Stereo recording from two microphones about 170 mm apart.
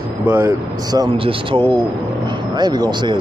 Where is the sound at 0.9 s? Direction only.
25° right (ahead or behind).